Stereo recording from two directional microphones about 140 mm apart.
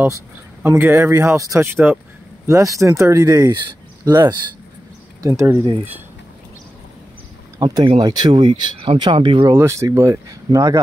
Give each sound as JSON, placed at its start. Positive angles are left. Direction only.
{"t": 0.7, "sound": "speech", "side_deg": -15}
{"t": 7.5, "sound": "speech", "side_deg": -25}
{"t": 9.6, "sound": "speech", "side_deg": -20}